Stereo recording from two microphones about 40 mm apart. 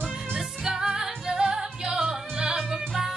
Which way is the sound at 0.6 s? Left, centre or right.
Centre.